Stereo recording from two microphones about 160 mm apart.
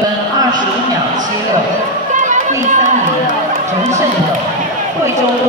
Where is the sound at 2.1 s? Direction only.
55° right (ahead or behind).